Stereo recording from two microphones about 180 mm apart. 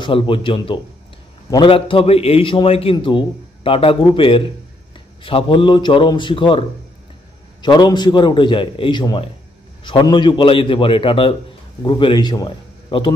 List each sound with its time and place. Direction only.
0.0 s a man's voice: 30° left (ahead or behind)
7.6 s a man's voice: 25° left (ahead or behind)